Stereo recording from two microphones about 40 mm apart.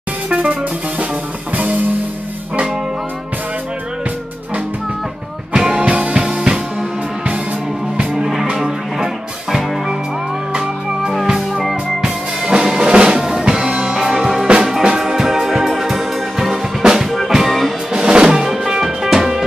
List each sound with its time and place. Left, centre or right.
0.3 s music: right
5.5 s music: right
8.0 s music: centre
11.2 s music: centre
13.9 s music: centre
17.5 s music: centre
17.9 s drum: right